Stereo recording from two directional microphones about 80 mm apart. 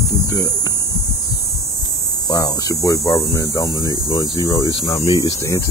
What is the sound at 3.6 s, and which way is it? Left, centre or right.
Hum, right.